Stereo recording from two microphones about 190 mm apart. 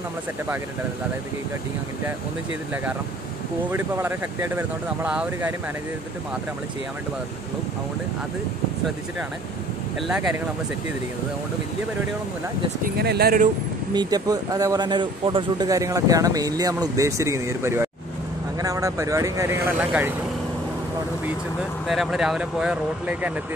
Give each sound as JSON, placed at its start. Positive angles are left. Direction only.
{"t": 2.7, "sound": "speech", "side_deg": -10}
{"t": 9.9, "sound": "speech", "side_deg": 0}
{"t": 12.8, "sound": "speech", "side_deg": -60}
{"t": 13.9, "sound": "a man's voice", "side_deg": -20}
{"t": 21.8, "sound": "speech", "side_deg": 0}